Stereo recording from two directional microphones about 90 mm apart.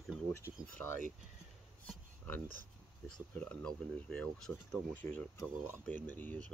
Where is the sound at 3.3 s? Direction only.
10° left (ahead or behind).